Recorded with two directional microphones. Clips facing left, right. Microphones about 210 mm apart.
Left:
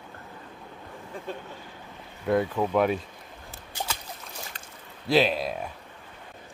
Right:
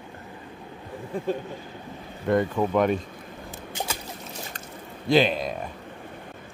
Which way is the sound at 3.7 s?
15° right (ahead or behind).